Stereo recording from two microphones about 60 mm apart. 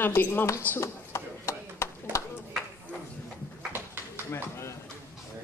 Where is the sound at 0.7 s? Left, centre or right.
Left.